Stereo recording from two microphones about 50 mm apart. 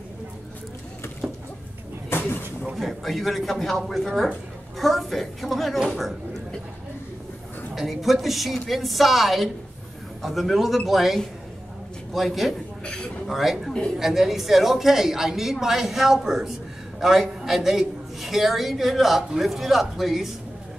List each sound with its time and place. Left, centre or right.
1.2 s a sound: centre
2.0 s a sound: left
2.7 s a woman's voice: centre
7.7 s a woman's voice: centre
12.8 s a man's voice: centre
13.3 s a woman's voice: centre